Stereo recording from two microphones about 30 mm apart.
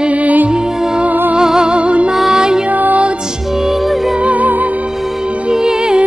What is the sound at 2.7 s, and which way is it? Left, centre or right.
Music, right.